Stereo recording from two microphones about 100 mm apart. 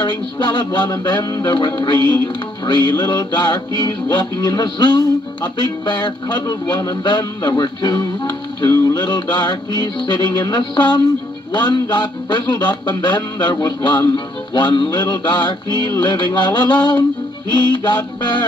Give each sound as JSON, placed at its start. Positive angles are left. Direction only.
{"t": 0.0, "sound": "music", "side_deg": 50}